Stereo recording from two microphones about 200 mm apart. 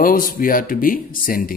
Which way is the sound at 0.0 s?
45° left (ahead or behind).